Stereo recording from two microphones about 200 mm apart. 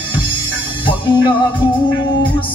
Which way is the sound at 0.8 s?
25° left (ahead or behind).